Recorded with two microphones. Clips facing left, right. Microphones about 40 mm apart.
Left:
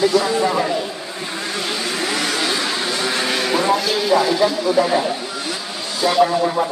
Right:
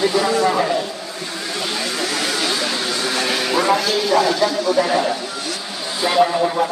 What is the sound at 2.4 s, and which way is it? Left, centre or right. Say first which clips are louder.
Vehicle: even; centre.